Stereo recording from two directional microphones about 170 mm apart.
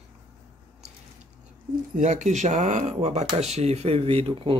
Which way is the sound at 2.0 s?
45° right (ahead or behind).